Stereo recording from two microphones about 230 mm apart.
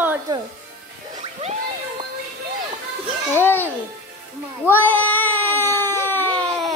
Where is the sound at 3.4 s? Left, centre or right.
Centre.